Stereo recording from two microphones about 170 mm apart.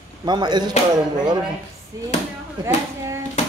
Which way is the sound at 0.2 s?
25° right (ahead or behind).